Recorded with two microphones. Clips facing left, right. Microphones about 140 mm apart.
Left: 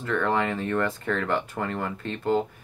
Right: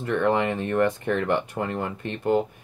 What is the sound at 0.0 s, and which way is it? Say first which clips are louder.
Speech: right 3 dB; 15° right (ahead or behind).